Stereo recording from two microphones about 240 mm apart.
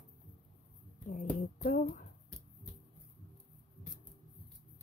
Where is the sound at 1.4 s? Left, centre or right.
Left.